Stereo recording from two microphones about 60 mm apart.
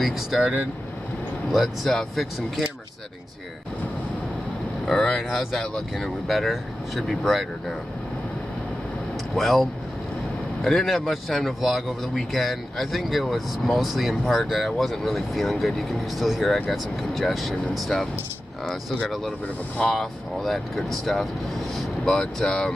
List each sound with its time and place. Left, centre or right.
0.0 s speech: centre
0.4 s speech: centre
1.5 s speech: centre
4.8 s speech: centre
9.3 s speech: centre
19.0 s speech: centre